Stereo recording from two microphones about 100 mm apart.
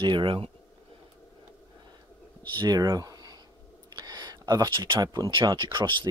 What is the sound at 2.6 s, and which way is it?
Speech, 40° right (ahead or behind).